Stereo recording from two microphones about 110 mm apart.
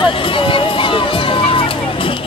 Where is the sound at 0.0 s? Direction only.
50° left (ahead or behind).